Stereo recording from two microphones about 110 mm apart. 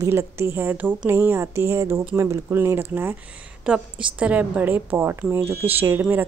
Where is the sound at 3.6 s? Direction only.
10° right (ahead or behind).